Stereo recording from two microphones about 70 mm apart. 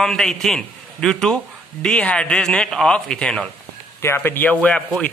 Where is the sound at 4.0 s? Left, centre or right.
Left.